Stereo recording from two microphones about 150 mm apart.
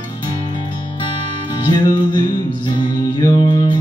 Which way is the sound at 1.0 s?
30° left (ahead or behind).